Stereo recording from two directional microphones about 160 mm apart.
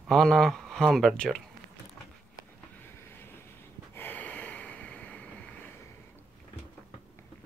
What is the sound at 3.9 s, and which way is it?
Snort, 15° left (ahead or behind).